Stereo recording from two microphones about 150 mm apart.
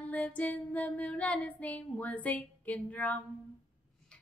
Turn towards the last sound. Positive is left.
turn(degrees=10)  # may be behind; listen again after turning